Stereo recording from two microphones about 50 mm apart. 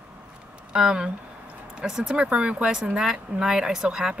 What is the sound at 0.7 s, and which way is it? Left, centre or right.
Speech, centre.